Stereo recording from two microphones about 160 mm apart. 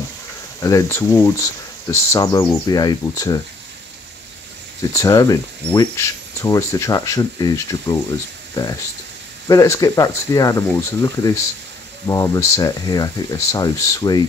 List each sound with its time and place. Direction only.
0.6 s speech: 20° left (ahead or behind)
4.9 s speech: 20° left (ahead or behind)
9.5 s speech: 20° left (ahead or behind)